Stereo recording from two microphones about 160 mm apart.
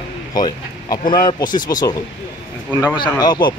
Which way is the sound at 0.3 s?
25° left (ahead or behind).